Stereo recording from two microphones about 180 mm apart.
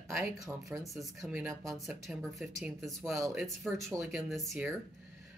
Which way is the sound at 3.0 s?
15° right (ahead or behind).